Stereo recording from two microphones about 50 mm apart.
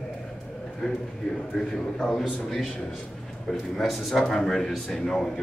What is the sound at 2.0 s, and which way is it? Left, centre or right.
Speech, centre.